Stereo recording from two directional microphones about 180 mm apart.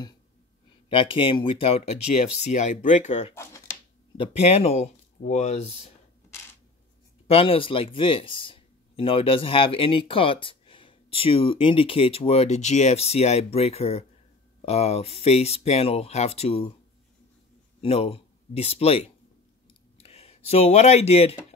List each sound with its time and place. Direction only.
0.8 s speech: 30° left (ahead or behind)
7.2 s speech: 30° left (ahead or behind)
17.7 s speech: 35° left (ahead or behind)